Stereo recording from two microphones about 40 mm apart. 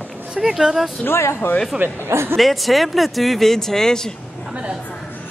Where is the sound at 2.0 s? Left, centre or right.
Right.